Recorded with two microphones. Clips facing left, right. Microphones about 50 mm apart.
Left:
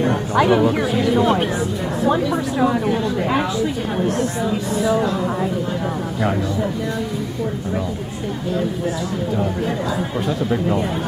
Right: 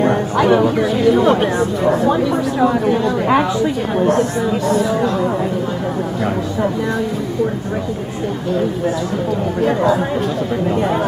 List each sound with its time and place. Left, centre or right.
0.4 s speech: centre
4.7 s speech: centre